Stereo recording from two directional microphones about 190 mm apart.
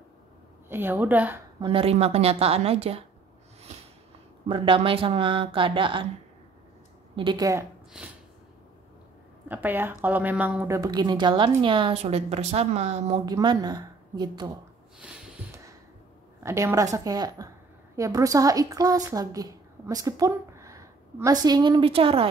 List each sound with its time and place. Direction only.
0.7 s a woman's voice: 10° right (ahead or behind)
1.6 s a woman's voice: 30° right (ahead or behind)
4.5 s a woman's voice: 30° right (ahead or behind)
7.2 s a woman's voice: 20° right (ahead or behind)
9.5 s a woman's voice: 10° right (ahead or behind); by 13.2 s 35° right (ahead or behind)
13.2 s a woman's voice: 20° right (ahead or behind)
16.4 s a woman's voice: 15° right (ahead or behind)